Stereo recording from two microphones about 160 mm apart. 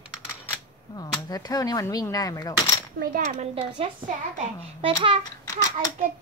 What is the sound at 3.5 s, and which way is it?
A woman's voice, 35° right (ahead or behind).